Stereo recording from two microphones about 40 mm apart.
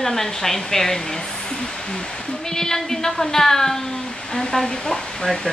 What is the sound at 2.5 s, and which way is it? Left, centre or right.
A woman's voice, centre.